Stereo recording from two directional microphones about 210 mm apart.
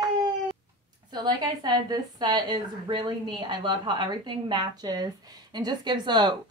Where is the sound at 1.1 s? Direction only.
20° right (ahead or behind).